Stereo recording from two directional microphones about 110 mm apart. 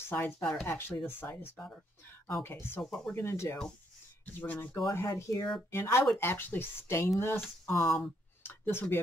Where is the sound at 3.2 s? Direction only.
25° left (ahead or behind).